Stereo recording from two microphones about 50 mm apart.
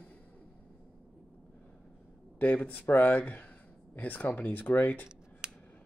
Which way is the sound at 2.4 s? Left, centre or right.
Left.